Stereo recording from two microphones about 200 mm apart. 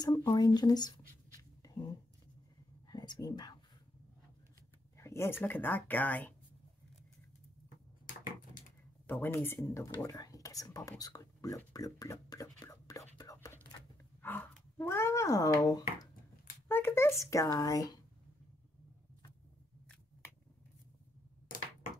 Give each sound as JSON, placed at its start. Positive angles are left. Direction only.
{"t": 0.0, "sound": "writing", "side_deg": 20}
{"t": 2.9, "sound": "whispering", "side_deg": 20}
{"t": 4.9, "sound": "speech", "side_deg": 15}
{"t": 9.0, "sound": "speech", "side_deg": 10}